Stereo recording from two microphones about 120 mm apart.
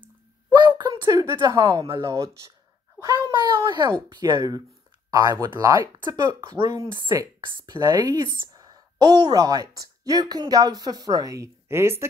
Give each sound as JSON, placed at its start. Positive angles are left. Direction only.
{"t": 0.6, "sound": "a sound", "side_deg": -40}
{"t": 1.9, "sound": "a woman's voice", "side_deg": -40}
{"t": 3.3, "sound": "a woman's voice", "side_deg": -40}
{"t": 7.4, "sound": "a woman's voice", "side_deg": -40}